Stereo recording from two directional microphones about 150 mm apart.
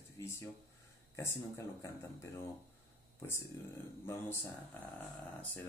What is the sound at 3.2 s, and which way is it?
Speech, 20° left (ahead or behind).